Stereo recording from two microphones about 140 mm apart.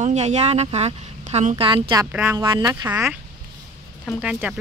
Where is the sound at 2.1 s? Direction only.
20° right (ahead or behind).